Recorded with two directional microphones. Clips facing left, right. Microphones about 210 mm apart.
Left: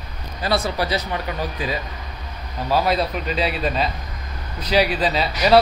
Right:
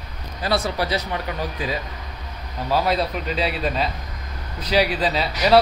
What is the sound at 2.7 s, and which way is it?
A man's voice, 15° left (ahead or behind).